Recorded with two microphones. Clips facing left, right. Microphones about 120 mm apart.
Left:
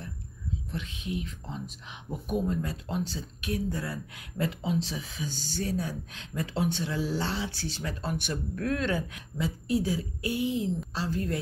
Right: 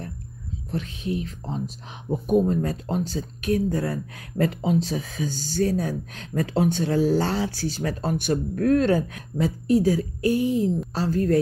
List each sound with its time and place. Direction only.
0.7 s speech: 40° right (ahead or behind)